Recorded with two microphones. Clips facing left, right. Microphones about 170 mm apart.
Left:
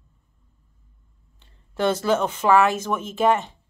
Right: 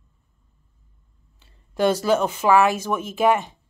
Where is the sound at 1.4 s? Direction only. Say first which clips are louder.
Right 3 dB; 10° right (ahead or behind).